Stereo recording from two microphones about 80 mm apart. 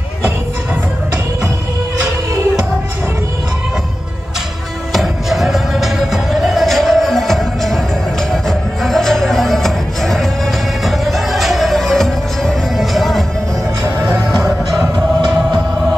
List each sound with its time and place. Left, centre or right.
4.9 s music: centre